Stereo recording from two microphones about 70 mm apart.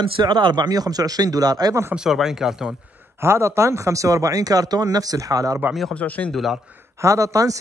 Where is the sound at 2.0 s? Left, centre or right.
Centre.